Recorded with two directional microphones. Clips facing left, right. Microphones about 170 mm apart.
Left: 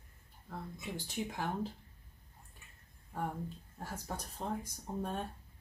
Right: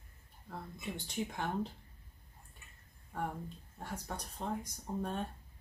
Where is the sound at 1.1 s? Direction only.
5° left (ahead or behind).